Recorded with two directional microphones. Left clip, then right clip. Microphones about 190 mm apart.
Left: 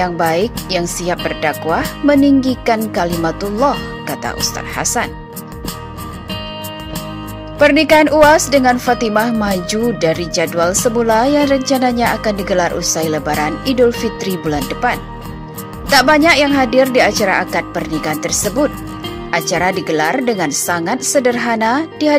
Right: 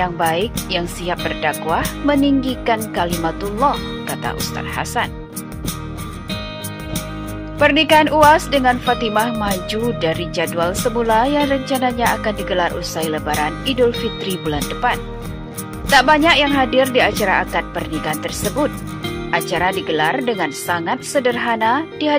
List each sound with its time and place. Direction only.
0.0 s speech: 20° left (ahead or behind)
7.5 s speech: 20° left (ahead or behind)